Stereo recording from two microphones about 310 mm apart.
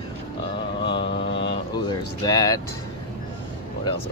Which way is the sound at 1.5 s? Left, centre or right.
Centre.